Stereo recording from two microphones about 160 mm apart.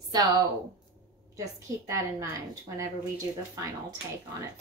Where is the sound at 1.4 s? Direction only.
20° right (ahead or behind).